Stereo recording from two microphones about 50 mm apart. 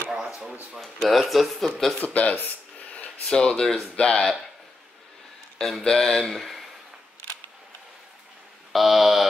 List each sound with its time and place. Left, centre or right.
1.0 s speech: centre
2.0 s speech: left
2.4 s a sound: left
3.3 s speech: centre
3.9 s speech: centre
5.6 s speech: centre
8.7 s speech: centre